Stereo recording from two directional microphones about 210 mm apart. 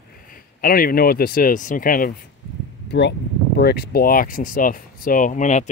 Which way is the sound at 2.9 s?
55° left (ahead or behind).